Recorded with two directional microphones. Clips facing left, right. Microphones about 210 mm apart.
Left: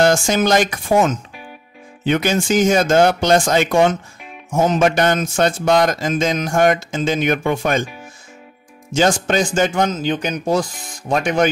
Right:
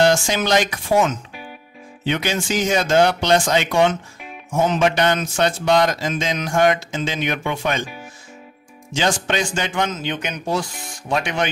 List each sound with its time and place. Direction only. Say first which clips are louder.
0.0 s speech: left 2 dB; 50° left (ahead or behind)
8.9 s speech: left 5 dB; 45° left (ahead or behind)